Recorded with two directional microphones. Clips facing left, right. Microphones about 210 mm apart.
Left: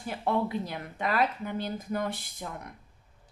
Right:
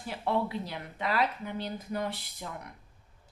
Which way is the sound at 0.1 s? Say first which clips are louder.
Left 2 dB; 50° left (ahead or behind).